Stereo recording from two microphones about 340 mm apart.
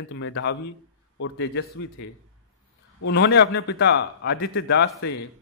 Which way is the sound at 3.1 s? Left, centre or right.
Left.